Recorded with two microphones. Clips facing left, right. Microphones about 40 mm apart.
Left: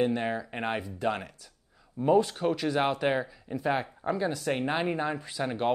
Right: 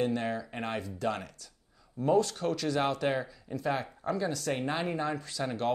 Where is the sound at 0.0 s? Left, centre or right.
Centre.